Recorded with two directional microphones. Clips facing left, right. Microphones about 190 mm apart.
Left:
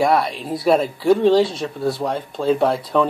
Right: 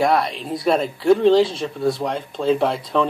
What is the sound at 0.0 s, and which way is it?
Speech, centre (ahead or behind).